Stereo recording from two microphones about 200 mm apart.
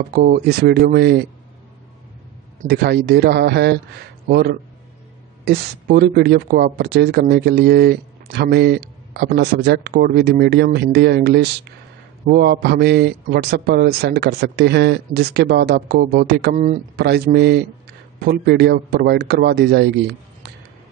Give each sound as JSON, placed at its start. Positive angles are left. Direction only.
{"t": 0.1, "sound": "speech", "side_deg": -50}
{"t": 2.6, "sound": "a man's voice", "side_deg": -55}
{"t": 16.5, "sound": "speech", "side_deg": -40}
{"t": 17.0, "sound": "a man's voice", "side_deg": -55}